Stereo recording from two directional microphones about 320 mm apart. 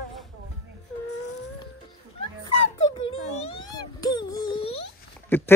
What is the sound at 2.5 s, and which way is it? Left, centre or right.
Music, centre.